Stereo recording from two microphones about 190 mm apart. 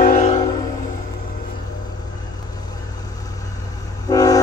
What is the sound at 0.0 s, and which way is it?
Music, 40° left (ahead or behind).